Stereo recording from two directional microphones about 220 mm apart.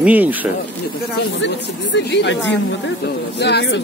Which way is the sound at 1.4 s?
55° left (ahead or behind).